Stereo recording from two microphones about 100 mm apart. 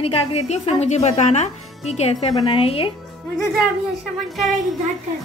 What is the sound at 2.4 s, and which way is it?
Speech, 55° left (ahead or behind).